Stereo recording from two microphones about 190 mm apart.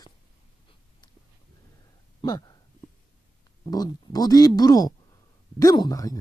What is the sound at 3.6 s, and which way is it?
Speech, 20° left (ahead or behind).